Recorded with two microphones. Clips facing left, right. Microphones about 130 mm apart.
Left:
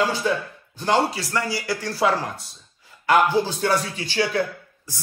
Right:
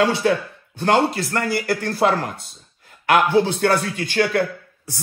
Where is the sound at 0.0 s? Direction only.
65° right (ahead or behind).